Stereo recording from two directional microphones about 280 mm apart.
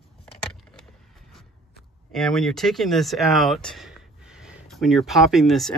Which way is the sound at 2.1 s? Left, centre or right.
Centre.